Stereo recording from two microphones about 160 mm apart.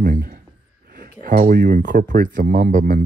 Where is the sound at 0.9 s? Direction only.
70° right (ahead or behind).